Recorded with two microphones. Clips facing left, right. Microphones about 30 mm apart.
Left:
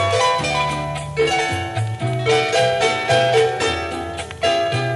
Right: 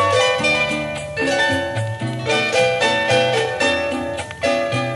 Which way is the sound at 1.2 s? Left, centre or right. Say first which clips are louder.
Right 1 dB; right.